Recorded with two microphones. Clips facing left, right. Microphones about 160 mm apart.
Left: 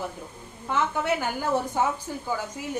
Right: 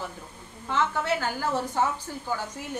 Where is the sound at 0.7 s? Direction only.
15° left (ahead or behind).